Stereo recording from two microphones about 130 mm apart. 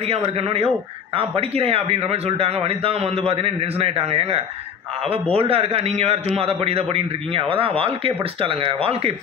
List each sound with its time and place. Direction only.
0.0 s a man's voice: 50° right (ahead or behind)